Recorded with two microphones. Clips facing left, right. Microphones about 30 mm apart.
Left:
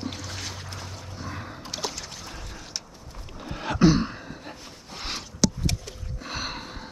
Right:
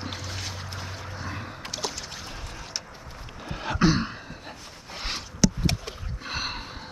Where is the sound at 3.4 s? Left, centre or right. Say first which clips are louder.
Left 3 dB; centre.